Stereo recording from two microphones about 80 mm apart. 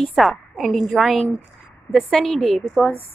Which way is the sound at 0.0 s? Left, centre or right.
Centre.